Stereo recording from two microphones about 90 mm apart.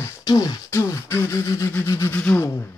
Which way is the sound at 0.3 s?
45° left (ahead or behind).